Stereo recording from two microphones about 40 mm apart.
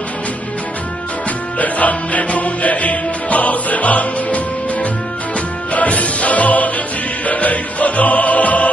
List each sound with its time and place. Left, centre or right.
1.6 s music: left
5.7 s music: left